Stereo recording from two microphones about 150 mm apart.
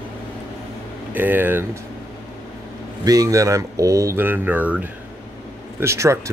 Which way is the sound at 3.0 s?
25° right (ahead or behind).